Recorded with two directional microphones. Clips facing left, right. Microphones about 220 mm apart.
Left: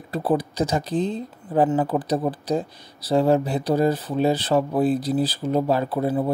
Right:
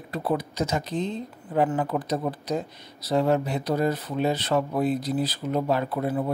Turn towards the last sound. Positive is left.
turn(degrees=30)  # may be behind; listen again after turning